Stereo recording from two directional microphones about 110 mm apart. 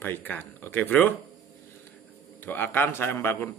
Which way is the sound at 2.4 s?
20° left (ahead or behind).